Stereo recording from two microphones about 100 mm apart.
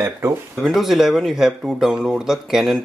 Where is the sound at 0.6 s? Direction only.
Centre (ahead or behind).